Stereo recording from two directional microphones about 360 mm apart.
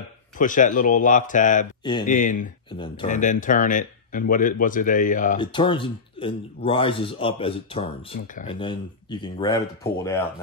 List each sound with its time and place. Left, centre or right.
0.4 s speech: left